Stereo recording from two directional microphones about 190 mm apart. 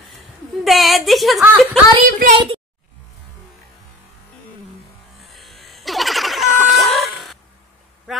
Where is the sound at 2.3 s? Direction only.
30° right (ahead or behind).